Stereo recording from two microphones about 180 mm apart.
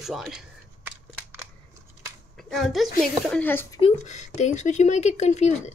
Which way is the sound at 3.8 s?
40° left (ahead or behind).